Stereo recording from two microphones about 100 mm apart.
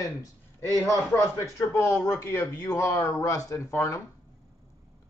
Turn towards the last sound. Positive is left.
turn(degrees=30)  # may be behind; listen again after turning